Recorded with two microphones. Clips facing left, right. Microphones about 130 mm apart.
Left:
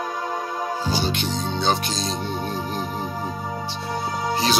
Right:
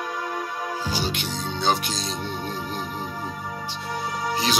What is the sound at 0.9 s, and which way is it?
Music, 10° right (ahead or behind).